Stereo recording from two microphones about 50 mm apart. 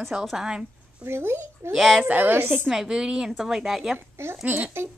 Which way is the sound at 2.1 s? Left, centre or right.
Right.